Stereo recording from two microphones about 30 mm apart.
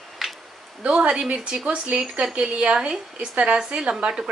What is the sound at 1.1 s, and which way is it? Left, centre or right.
Speech, right.